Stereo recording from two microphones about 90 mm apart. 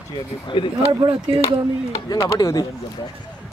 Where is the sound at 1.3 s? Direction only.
90° right.